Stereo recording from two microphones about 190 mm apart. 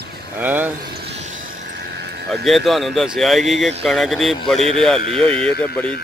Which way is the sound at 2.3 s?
Centre (ahead or behind).